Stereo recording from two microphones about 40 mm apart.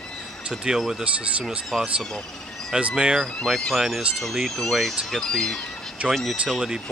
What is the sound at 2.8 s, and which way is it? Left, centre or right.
Speech, right.